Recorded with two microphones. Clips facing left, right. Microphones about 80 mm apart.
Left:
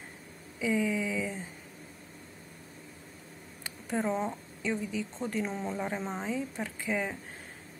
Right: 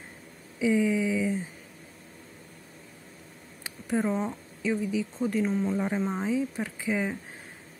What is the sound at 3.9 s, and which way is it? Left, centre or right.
A woman's voice, centre.